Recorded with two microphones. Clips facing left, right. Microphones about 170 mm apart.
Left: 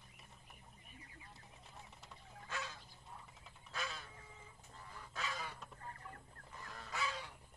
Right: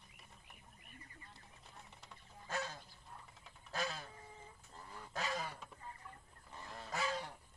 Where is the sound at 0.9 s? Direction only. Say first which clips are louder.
Right 1 dB; 5° left (ahead or behind).